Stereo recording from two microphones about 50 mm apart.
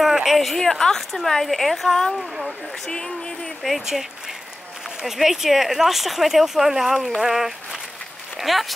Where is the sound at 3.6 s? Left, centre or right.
Centre.